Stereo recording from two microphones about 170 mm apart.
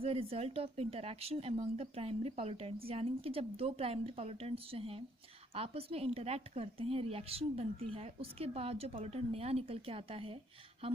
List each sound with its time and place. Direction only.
0.0 s a woman's voice: 35° right (ahead or behind)